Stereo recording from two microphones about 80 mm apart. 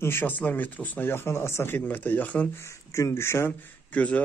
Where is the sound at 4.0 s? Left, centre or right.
Centre.